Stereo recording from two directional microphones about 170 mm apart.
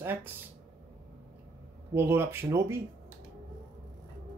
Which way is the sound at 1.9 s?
15° right (ahead or behind).